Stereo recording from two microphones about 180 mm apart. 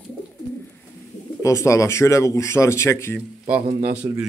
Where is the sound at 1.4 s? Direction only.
15° left (ahead or behind).